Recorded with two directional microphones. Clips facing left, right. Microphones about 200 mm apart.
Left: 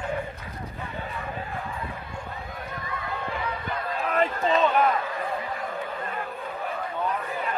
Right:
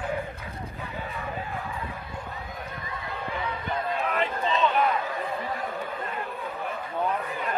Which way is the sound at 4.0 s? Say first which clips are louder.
Left 7 dB; 40° left (ahead or behind).